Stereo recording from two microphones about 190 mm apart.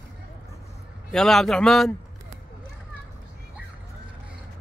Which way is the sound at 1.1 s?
Centre (ahead or behind).